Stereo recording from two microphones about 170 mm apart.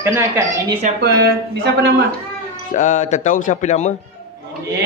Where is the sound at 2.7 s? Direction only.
45° left (ahead or behind).